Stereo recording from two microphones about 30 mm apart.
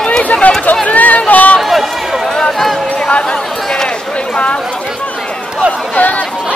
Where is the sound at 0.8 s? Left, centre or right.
Left.